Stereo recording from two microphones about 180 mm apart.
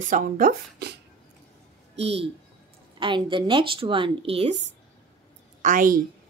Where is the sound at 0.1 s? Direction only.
50° right (ahead or behind).